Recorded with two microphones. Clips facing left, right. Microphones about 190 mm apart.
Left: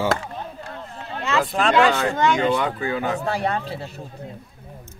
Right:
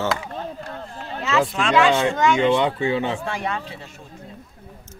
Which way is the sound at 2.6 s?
25° right (ahead or behind).